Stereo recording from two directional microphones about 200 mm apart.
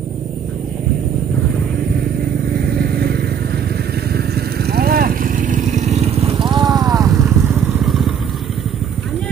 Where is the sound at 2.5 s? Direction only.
50° right (ahead or behind); by 7.8 s 10° right (ahead or behind).